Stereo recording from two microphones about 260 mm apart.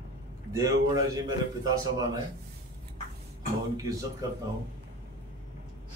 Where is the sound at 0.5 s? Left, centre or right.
Centre.